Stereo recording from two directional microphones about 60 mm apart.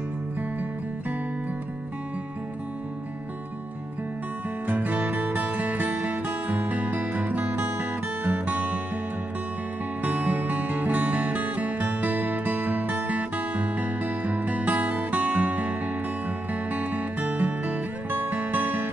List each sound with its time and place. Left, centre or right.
4.6 s music: right
10.0 s music: right
16.7 s music: right